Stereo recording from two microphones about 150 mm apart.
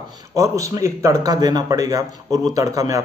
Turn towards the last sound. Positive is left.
turn(degrees=-25)  # may be behind; listen again after turning